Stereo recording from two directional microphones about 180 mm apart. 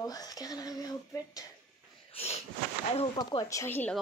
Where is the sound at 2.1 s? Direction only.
35° left (ahead or behind).